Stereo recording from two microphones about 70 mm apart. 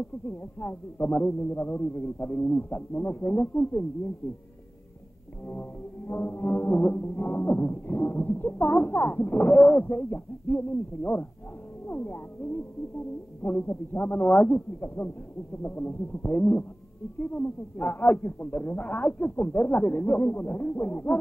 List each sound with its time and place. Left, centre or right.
0.3 s speech: left
5.4 s speech: left